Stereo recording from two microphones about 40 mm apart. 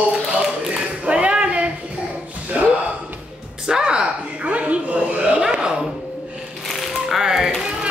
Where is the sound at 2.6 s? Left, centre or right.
Right.